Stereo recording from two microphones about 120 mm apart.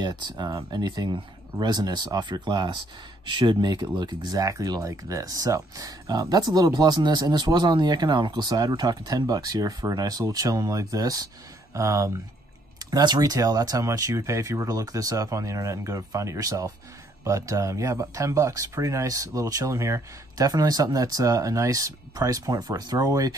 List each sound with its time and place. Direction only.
0.0 s speech: 35° right (ahead or behind)